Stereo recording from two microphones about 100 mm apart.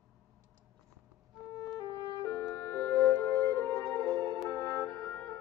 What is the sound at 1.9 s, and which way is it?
Music, 35° left (ahead or behind).